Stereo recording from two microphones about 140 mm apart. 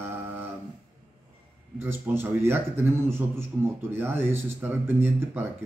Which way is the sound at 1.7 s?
15° right (ahead or behind).